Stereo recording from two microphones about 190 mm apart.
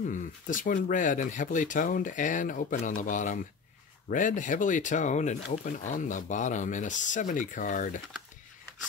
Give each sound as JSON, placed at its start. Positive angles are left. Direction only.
{"t": 0.0, "sound": "speech", "side_deg": 45}